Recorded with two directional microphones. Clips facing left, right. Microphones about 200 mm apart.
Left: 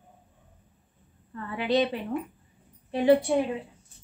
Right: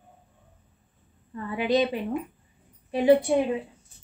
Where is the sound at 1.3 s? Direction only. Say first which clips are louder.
Right 2 dB; 15° right (ahead or behind).